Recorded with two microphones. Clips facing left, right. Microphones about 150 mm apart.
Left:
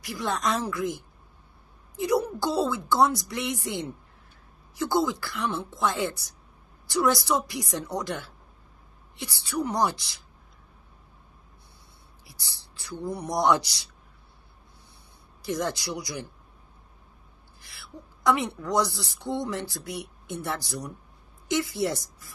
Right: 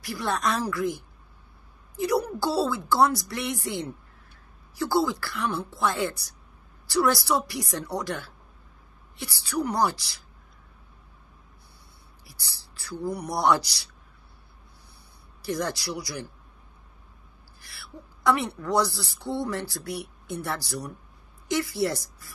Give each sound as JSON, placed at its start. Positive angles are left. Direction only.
{"t": 0.0, "sound": "a woman's voice", "side_deg": 20}
{"t": 12.3, "sound": "a woman's voice", "side_deg": 20}
{"t": 15.4, "sound": "a woman's voice", "side_deg": 20}
{"t": 17.6, "sound": "a sound", "side_deg": 20}
{"t": 18.2, "sound": "a woman's voice", "side_deg": 20}